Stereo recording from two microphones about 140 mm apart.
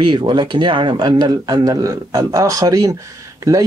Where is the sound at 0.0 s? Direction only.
30° right (ahead or behind).